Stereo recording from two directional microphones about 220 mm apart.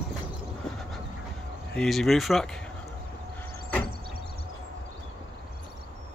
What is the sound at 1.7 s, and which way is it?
Speech, centre (ahead or behind).